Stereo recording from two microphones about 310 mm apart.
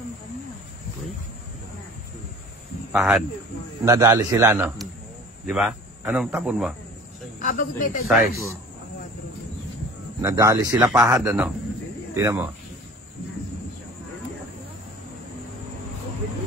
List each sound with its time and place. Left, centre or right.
2.9 s speech: centre
7.3 s speech: left
8.1 s speech: centre
10.2 s speech: centre